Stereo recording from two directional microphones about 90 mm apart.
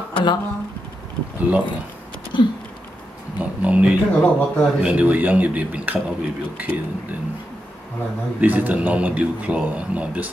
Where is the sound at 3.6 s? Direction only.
15° right (ahead or behind).